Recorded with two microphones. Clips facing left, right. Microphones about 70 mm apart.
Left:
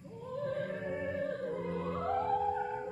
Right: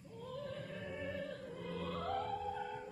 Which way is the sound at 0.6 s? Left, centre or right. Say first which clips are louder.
Left 9 dB; left.